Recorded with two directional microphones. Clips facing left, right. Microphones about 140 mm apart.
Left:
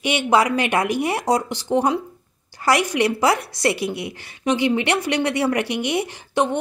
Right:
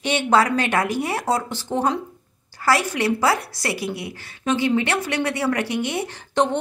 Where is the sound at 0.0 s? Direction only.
15° left (ahead or behind).